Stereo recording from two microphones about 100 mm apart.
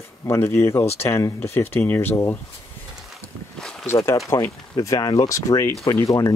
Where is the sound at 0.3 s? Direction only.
20° left (ahead or behind).